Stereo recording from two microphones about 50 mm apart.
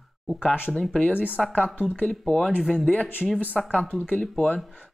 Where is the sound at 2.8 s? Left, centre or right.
Left.